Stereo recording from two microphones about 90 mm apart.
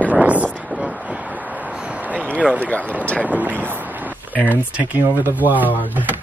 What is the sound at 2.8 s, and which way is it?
Speech, 20° right (ahead or behind).